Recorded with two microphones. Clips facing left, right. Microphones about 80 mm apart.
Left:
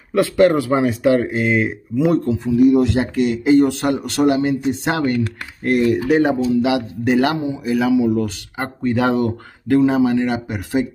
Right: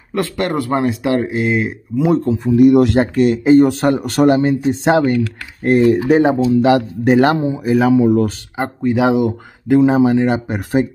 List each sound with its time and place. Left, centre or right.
0.1 s speech: centre
2.2 s speech: right
2.5 s speech: right
8.5 s speech: centre
9.8 s speech: right